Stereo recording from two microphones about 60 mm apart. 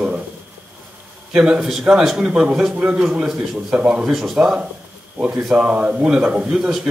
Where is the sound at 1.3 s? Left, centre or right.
Centre.